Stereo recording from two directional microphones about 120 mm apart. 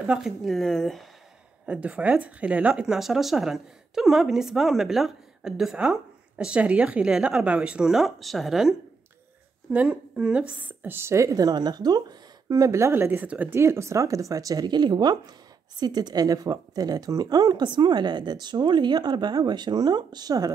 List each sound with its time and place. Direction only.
0.0 s speech: 5° right (ahead or behind)
1.7 s speech: 10° right (ahead or behind)
9.7 s a woman's voice: 10° right (ahead or behind); by 20.5 s 30° right (ahead or behind)